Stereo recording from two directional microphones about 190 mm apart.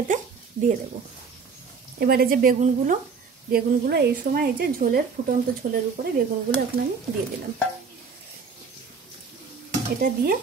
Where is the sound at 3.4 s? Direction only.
55° right (ahead or behind).